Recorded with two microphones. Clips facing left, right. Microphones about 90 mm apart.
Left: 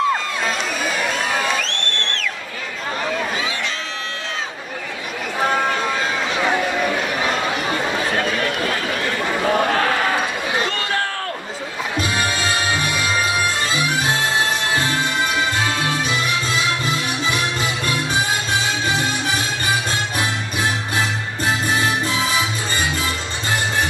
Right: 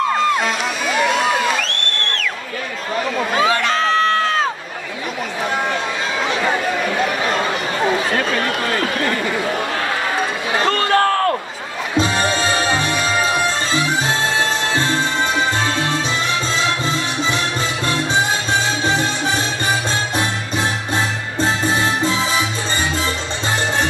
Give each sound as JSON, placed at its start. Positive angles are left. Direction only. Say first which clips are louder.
{"t": 3.3, "sound": "crowd", "louder": "right 9 dB", "side_deg": -50}
{"t": 10.9, "sound": "a sound", "louder": "right 8 dB", "side_deg": -55}
{"t": 12.0, "sound": "music", "louder": "right 5 dB", "side_deg": -25}
{"t": 18.9, "sound": "music", "louder": "right 2 dB", "side_deg": -25}